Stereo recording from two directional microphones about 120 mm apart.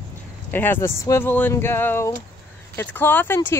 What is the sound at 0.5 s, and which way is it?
Speech, 20° left (ahead or behind).